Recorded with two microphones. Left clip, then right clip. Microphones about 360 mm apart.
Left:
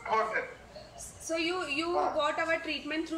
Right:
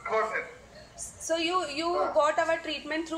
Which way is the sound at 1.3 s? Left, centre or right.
Centre.